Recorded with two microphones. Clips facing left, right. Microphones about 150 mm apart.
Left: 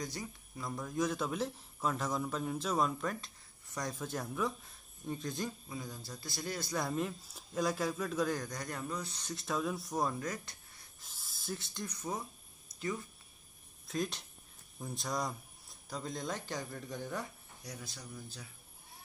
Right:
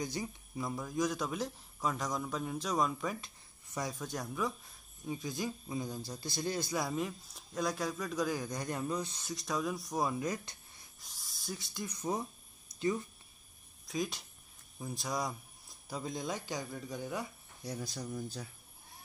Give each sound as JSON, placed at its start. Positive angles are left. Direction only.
{"t": 0.0, "sound": "speech", "side_deg": -15}
{"t": 0.7, "sound": "a man's voice", "side_deg": 0}
{"t": 5.7, "sound": "a man's voice", "side_deg": -20}
{"t": 6.7, "sound": "a man's voice", "side_deg": 0}
{"t": 8.5, "sound": "speech", "side_deg": -20}
{"t": 9.3, "sound": "a man's voice", "side_deg": 0}
{"t": 10.1, "sound": "speech", "side_deg": -15}
{"t": 11.0, "sound": "a sound", "side_deg": 0}
{"t": 11.8, "sound": "speech", "side_deg": -15}
{"t": 13.8, "sound": "a man's voice", "side_deg": 0}
{"t": 17.6, "sound": "speech", "side_deg": -35}